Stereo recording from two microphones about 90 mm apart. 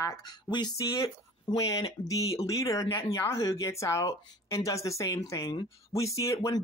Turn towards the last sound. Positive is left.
turn(degrees=35)  # may be behind; listen again after turning